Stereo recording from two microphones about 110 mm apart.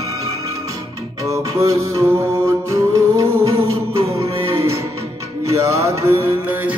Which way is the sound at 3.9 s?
55° right (ahead or behind).